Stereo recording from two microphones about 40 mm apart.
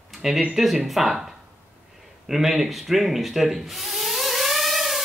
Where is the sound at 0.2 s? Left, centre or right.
Centre.